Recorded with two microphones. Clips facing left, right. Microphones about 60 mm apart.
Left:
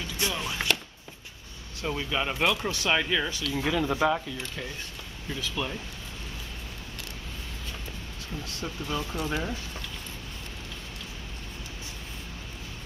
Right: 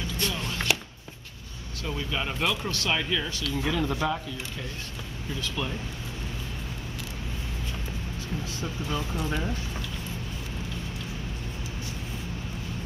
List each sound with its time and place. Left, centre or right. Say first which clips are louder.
0.2 s music: left 1 dB; centre
1.8 s speech: left 2 dB; left
2.0 s speech: left 2 dB; centre
2.6 s speech: left 2 dB; centre
5.6 s speech: even; centre
8.5 s speech: left 2 dB; centre